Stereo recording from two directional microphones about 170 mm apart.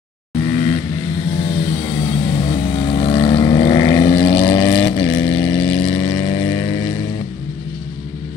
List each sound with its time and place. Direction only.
1.5 s vehicle: 35° left (ahead or behind)
4.3 s vehicle: 35° left (ahead or behind)